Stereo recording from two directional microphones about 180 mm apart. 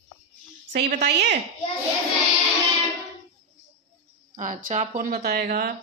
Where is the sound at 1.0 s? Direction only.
70° right (ahead or behind).